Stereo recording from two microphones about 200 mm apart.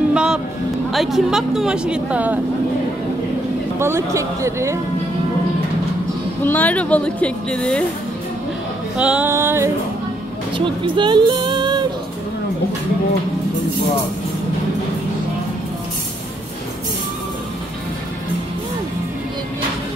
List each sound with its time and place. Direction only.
0.1 s music: 5° right (ahead or behind)
0.9 s a woman's voice: centre (ahead or behind)
3.8 s speech: 15° right (ahead or behind)
6.4 s speech: 10° left (ahead or behind)
8.9 s speech: 5° right (ahead or behind)
10.6 s speech: 25° right (ahead or behind)